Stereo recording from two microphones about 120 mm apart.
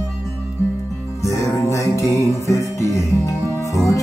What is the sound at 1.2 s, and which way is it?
Music, 25° left (ahead or behind).